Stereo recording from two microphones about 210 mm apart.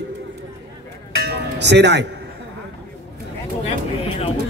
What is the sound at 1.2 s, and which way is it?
Music, 55° right (ahead or behind).